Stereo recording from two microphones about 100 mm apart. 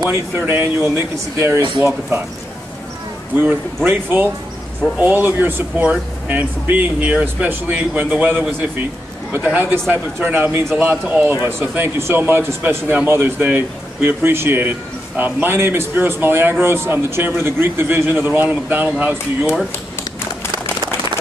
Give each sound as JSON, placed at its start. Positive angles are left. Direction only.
{"t": 0.5, "sound": "speech", "side_deg": -20}
{"t": 3.3, "sound": "speech", "side_deg": -20}